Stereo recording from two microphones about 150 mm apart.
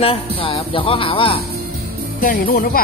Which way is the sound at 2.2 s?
70° left (ahead or behind).